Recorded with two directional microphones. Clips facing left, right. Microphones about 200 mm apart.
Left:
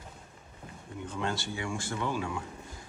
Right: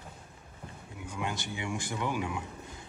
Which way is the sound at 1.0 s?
15° right (ahead or behind).